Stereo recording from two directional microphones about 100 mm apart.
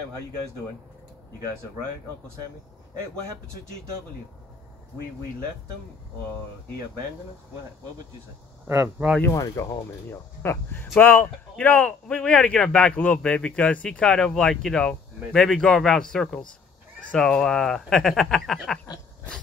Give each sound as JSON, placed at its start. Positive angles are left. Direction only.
{"t": 8.6, "sound": "speech", "side_deg": -25}
{"t": 9.3, "sound": "speech", "side_deg": 35}
{"t": 10.4, "sound": "speech", "side_deg": 25}